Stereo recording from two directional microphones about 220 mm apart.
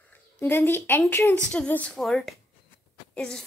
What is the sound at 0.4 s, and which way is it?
A woman's voice, 10° left (ahead or behind).